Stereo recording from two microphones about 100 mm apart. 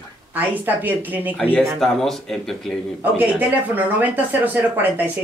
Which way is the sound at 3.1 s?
15° right (ahead or behind).